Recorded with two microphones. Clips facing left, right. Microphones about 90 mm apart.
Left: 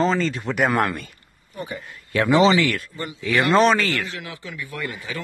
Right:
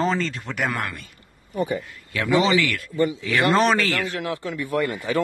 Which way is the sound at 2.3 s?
30° left (ahead or behind).